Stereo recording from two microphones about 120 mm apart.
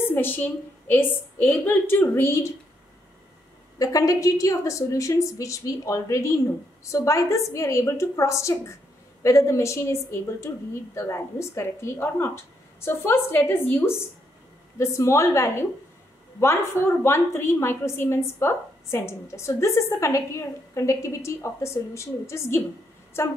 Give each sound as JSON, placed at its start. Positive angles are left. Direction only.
{"t": 0.0, "sound": "a woman's voice", "side_deg": 15}
{"t": 3.7, "sound": "a woman's voice", "side_deg": 30}